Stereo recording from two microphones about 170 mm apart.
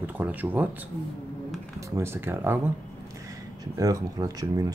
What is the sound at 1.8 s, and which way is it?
Speech, 15° right (ahead or behind).